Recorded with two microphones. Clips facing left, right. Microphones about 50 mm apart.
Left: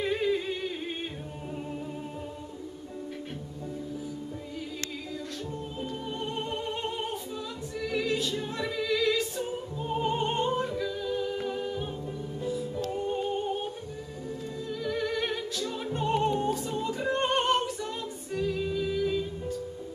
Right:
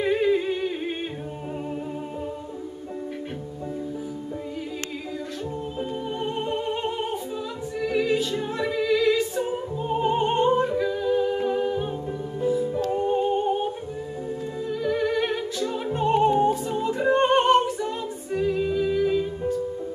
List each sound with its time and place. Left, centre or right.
0.0 s humming: centre
5.8 s music: centre
9.5 s opera: centre
11.4 s humming: centre
12.4 s music: centre
14.7 s music: centre